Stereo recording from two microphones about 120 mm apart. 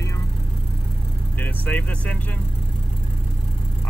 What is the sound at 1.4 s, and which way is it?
Speech, 15° left (ahead or behind).